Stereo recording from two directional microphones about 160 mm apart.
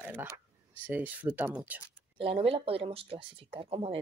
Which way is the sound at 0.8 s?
10° right (ahead or behind).